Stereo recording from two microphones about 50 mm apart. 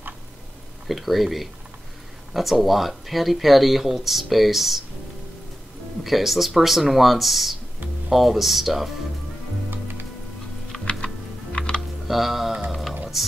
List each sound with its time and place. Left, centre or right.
0.8 s speech: centre
6.0 s speech: centre
11.5 s typing: centre
12.1 s music: centre
13.1 s speech: centre